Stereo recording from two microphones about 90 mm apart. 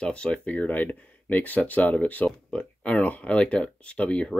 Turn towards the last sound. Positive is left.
turn(degrees=15)  # may be behind; listen again after turning